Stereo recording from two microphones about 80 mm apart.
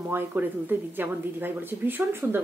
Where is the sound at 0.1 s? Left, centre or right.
Right.